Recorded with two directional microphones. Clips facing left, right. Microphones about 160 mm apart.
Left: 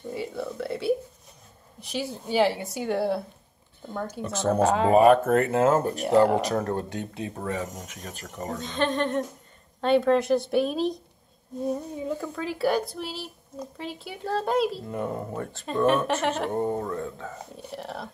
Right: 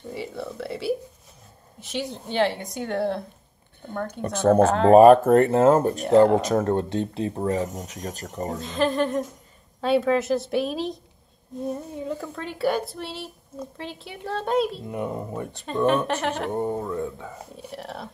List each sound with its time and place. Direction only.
0.1 s speech: centre (ahead or behind)
4.2 s a woman's voice: 55° right (ahead or behind)
4.6 s speech: 5° left (ahead or behind)
4.9 s speech: 40° right (ahead or behind)
8.5 s speech: 5° right (ahead or behind)
14.9 s speech: 10° right (ahead or behind)
15.6 s speech: centre (ahead or behind)
17.6 s speech: centre (ahead or behind)